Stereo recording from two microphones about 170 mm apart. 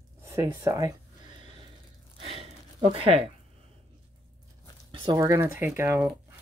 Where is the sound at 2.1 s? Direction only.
35° right (ahead or behind).